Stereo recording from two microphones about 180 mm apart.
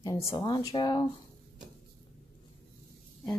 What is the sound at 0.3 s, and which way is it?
Speech, 25° left (ahead or behind).